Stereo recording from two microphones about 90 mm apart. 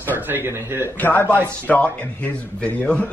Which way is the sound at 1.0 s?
20° left (ahead or behind).